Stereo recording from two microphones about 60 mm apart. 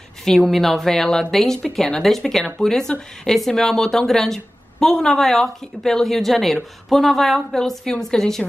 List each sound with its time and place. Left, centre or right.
0.2 s a woman's voice: centre